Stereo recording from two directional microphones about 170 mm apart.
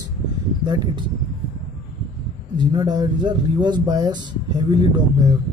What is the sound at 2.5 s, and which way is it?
Speech, 25° right (ahead or behind).